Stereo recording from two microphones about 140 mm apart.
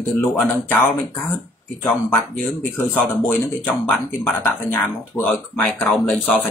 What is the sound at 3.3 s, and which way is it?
Speech, 5° left (ahead or behind).